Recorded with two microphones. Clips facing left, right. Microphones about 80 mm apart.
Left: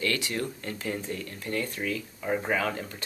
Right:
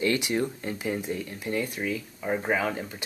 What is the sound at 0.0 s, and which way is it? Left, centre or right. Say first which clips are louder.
Speech: right 4 dB; centre.